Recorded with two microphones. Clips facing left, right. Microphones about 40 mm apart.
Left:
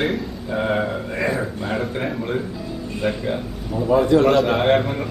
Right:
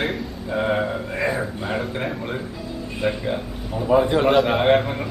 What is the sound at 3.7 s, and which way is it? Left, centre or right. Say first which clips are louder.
Speech: left 2 dB; centre.